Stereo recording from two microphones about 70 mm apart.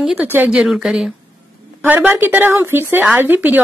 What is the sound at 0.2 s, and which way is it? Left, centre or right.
Speech, right.